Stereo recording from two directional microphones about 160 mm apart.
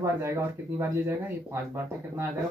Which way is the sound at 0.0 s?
15° right (ahead or behind).